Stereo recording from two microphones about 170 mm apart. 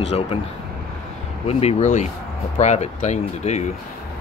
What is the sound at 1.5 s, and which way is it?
Speech, 35° left (ahead or behind).